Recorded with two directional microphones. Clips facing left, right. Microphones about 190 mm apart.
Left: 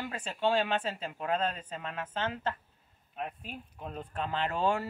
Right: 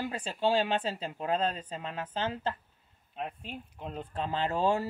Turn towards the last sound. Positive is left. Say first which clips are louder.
# right 2 dB
turn(degrees=-35)  # may be behind; listen again after turning